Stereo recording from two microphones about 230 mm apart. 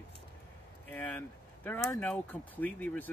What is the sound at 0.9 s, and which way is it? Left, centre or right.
Speech, centre.